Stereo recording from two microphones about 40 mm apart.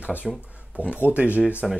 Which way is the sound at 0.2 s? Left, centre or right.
Centre.